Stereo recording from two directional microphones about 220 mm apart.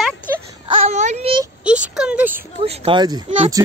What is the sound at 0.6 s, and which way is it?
Baby cry, 30° right (ahead or behind).